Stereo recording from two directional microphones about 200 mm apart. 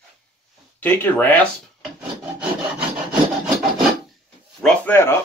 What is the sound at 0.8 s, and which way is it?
Speech, 10° left (ahead or behind).